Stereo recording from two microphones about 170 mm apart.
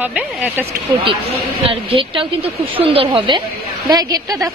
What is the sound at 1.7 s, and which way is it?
A woman's voice, 30° right (ahead or behind).